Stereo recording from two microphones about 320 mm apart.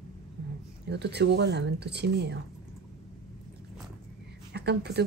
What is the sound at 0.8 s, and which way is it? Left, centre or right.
Speech, right.